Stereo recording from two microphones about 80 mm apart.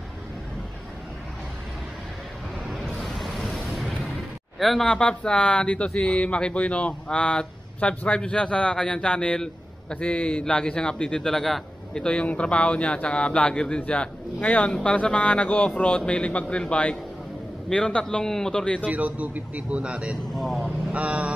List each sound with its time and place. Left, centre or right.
2.7 s a sound: centre
4.6 s speech: centre
18.9 s speech: centre
20.3 s speech: centre
20.9 s speech: centre